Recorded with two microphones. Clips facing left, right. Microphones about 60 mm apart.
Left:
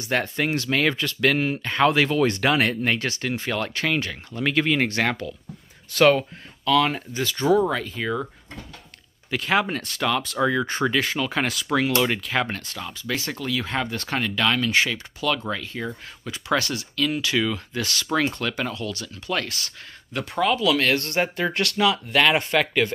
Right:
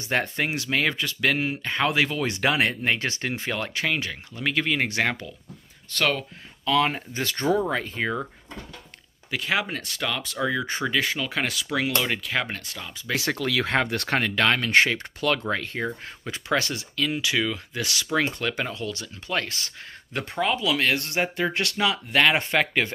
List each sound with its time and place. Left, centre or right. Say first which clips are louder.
0.0 s speech: left 1 dB; right
3.0 s speech: left 2 dB; right; by 4.8 s centre
4.8 s speech: left 2 dB; centre
5.9 s speech: left 8 dB; centre
6.6 s speech: left 2 dB; right
7.2 s speech: left 2 dB; right
7.7 s speech: left 1 dB; right
9.3 s speech: left 4 dB; centre
13.2 s speech: right 3 dB; right
16.4 s speech: left 2 dB; right